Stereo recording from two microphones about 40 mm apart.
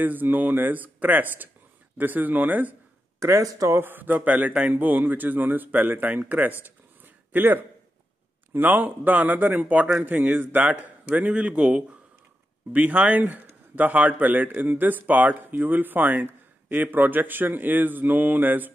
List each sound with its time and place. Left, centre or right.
0.0 s a man's voice: right
3.6 s a man's voice: right
6.6 s a sound: right
8.5 s a man's voice: right
12.7 s a man's voice: right